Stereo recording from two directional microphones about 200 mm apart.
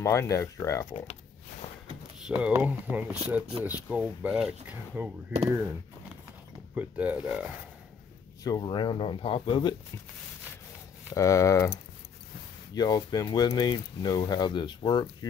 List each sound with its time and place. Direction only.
0.0 s speech: 15° left (ahead or behind)
2.2 s speech: 5° right (ahead or behind)
6.7 s speech: 5° right (ahead or behind)
8.5 s speech: 20° left (ahead or behind)
11.1 s speech: 15° left (ahead or behind)
12.7 s speech: 20° left (ahead or behind)